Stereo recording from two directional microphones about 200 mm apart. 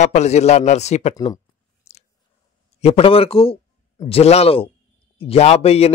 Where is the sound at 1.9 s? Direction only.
30° left (ahead or behind).